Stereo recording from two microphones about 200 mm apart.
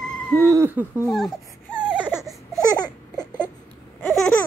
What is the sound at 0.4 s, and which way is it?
Speech, 15° right (ahead or behind).